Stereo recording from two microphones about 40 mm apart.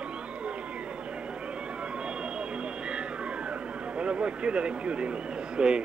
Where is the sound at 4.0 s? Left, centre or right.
Right.